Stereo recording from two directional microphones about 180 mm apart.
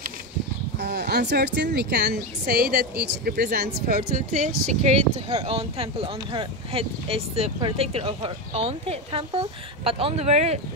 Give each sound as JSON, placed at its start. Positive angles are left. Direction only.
{"t": 0.7, "sound": "a woman's voice", "side_deg": -65}